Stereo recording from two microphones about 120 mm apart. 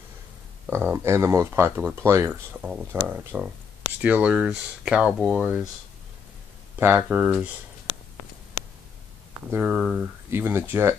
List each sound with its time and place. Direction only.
0.7 s speech: 20° right (ahead or behind)
6.8 s speech: 20° right (ahead or behind)
9.5 s speech: 10° right (ahead or behind)
10.3 s speech: 20° right (ahead or behind)